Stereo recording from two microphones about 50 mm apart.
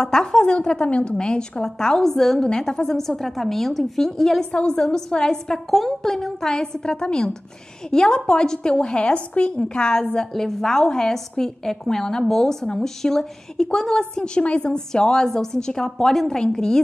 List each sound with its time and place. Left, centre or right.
0.0 s a woman's voice: centre